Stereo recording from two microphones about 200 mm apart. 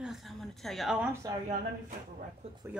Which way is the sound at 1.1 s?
15° right (ahead or behind).